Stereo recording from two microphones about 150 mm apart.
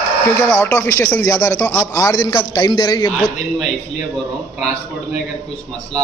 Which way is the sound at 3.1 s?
Centre (ahead or behind).